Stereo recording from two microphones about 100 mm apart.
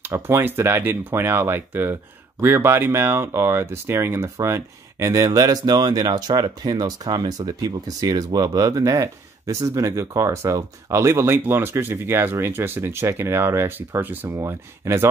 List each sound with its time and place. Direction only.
0.0 s speech: 20° right (ahead or behind)
14.3 s speech: 30° right (ahead or behind)